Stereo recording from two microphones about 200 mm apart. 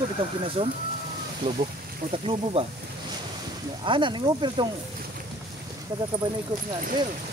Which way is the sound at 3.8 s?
25° right (ahead or behind).